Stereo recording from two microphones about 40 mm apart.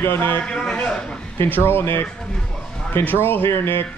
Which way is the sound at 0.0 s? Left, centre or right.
Left.